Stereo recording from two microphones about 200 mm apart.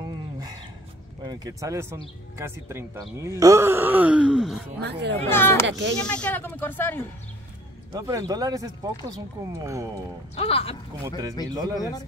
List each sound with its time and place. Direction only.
0.0 s a sound: 20° right (ahead or behind)
1.2 s speech: 20° right (ahead or behind); by 4.6 s 5° right (ahead or behind)
4.8 s speech: 60° right (ahead or behind)
5.3 s speech: 10° left (ahead or behind)
5.7 s speech: 65° right (ahead or behind)
6.0 s speech: 5° left (ahead or behind)
7.9 s speech: 20° right (ahead or behind)
10.3 s speech: 30° left (ahead or behind)
11.5 s speech: 20° right (ahead or behind)